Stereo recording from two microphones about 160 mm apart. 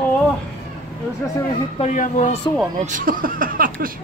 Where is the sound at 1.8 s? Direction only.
50° left (ahead or behind).